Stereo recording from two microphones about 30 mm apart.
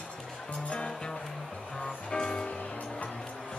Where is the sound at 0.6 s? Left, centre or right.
Left.